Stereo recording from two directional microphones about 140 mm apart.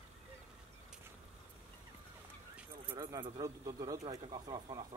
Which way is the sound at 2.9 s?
30° right (ahead or behind).